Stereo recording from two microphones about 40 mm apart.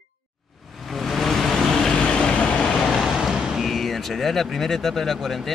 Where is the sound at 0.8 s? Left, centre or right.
Centre.